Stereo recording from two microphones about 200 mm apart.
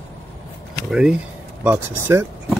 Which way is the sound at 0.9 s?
5° right (ahead or behind).